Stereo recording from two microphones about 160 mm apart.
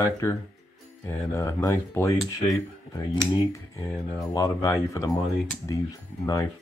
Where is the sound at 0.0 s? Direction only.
15° left (ahead or behind).